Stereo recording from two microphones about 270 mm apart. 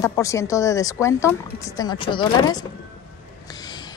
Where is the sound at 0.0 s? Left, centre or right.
Centre.